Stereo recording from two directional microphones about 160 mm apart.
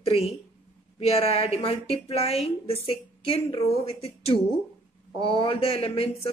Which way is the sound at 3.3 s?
35° left (ahead or behind).